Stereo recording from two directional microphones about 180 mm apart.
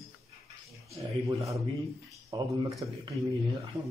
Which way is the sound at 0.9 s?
15° right (ahead or behind).